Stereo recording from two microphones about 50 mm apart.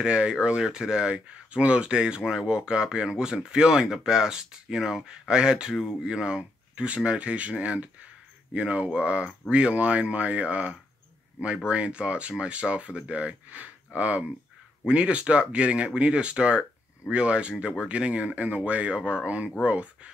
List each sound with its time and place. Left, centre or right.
0.0 s speech: centre